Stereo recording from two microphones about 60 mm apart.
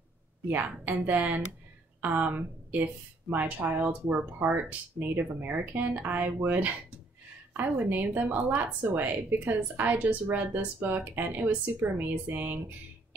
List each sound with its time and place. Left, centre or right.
0.5 s speech: right